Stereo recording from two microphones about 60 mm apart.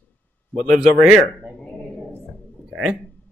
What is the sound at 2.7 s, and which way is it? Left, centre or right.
Speech, right.